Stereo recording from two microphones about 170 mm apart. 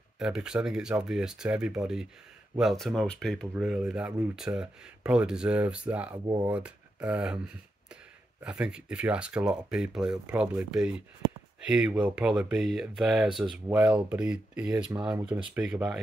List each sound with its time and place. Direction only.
0.2 s speech: 5° right (ahead or behind)
6.1 s speech: 25° right (ahead or behind)
6.5 s speech: 5° right (ahead or behind)